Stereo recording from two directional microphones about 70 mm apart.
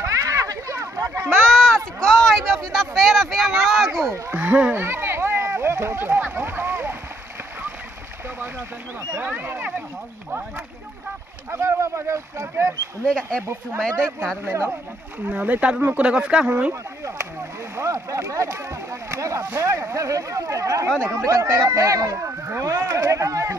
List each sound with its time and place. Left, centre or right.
0.0 s a sound: right
1.0 s a sound: right
1.3 s a sound: centre
4.1 s speech: right
4.7 s a sound: right
9.2 s speech: right
11.5 s speech: right
13.0 s speech: centre
14.4 s speech: right
15.2 s speech: right
17.7 s speech: right
22.1 s speech: right